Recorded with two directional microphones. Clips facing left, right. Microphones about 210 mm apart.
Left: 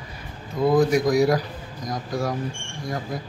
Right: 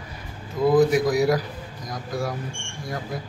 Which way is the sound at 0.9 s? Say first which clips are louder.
Left 1 dB; centre (ahead or behind).